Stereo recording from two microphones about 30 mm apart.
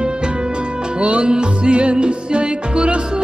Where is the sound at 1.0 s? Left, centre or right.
Right.